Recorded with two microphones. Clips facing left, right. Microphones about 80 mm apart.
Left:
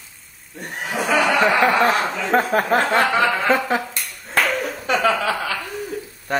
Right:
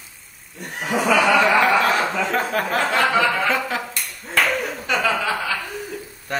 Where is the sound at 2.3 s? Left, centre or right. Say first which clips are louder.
Left 4 dB; left.